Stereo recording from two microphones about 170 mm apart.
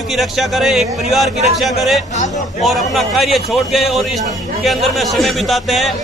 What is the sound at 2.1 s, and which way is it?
Speech, 45° left (ahead or behind).